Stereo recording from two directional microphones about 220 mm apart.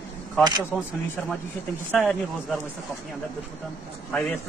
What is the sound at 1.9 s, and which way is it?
Speech, 5° left (ahead or behind).